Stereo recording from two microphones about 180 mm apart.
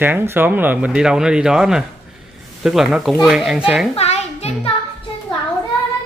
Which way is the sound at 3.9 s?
35° left (ahead or behind).